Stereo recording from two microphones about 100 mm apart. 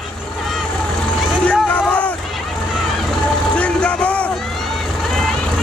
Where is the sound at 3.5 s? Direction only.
10° left (ahead or behind).